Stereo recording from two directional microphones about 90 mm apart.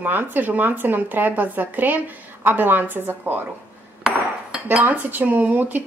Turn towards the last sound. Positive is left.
turn(degrees=-20)  # may be behind; listen again after turning